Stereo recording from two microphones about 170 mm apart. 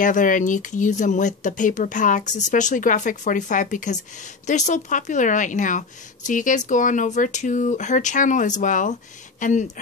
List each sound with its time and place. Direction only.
0.0 s a woman's voice: 50° left (ahead or behind)